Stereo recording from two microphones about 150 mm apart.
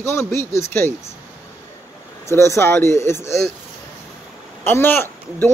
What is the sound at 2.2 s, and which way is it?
Speech, 20° left (ahead or behind).